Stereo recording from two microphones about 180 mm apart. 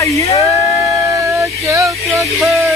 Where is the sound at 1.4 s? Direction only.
15° right (ahead or behind).